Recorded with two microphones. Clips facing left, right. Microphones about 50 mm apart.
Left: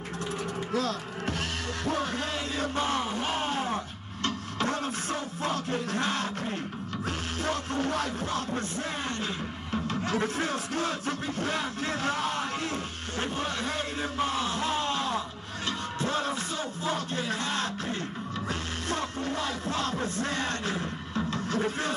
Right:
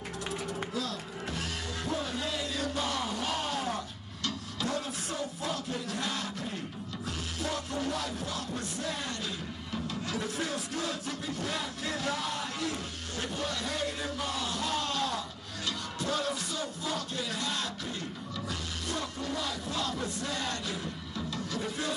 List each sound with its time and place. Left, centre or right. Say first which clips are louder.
0.7 s music: left 6 dB; left
9.7 s music: left 6 dB; left